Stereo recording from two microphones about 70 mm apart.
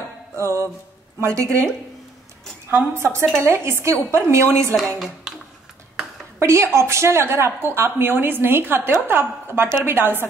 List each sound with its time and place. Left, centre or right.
0.4 s music: right
1.2 s a woman's voice: right
3.0 s a woman's voice: right
4.7 s speech: centre
6.4 s a woman's voice: right